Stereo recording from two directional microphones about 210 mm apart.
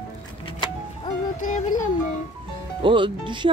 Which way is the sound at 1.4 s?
35° left (ahead or behind).